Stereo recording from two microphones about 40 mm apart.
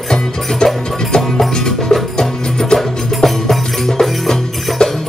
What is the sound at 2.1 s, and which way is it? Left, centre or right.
Music, centre.